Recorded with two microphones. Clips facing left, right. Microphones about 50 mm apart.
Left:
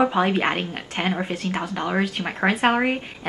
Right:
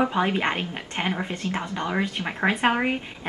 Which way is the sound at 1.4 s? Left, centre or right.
Left.